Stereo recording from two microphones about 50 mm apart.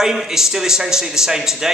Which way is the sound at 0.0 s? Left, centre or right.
Centre.